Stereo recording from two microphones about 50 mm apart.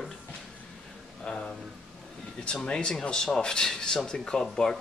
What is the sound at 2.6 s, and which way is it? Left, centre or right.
Speech, centre.